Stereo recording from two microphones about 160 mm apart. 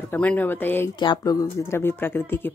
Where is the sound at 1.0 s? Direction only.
25° left (ahead or behind).